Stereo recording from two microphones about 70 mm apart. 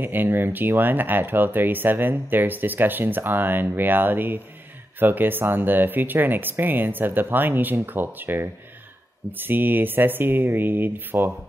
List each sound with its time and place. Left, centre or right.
0.0 s speech: right